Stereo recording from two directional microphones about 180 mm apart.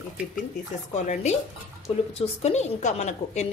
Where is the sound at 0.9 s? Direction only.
40° left (ahead or behind).